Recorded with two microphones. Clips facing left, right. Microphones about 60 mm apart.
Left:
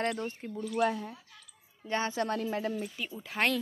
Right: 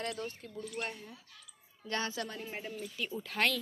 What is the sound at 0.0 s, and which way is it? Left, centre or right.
Speech, left.